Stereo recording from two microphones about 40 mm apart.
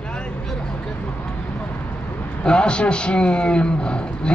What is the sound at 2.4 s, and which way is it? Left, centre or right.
Speech, left.